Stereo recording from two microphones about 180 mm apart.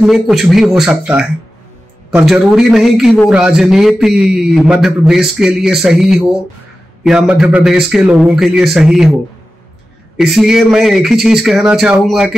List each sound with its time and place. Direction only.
0.0 s a man's voice: centre (ahead or behind)
10.1 s a man's voice: centre (ahead or behind)